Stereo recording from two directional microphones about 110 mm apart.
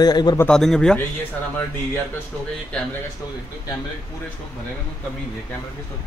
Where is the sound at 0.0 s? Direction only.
40° left (ahead or behind).